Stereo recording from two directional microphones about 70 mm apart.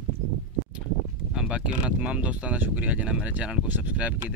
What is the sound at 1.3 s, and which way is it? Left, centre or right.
Speech, centre.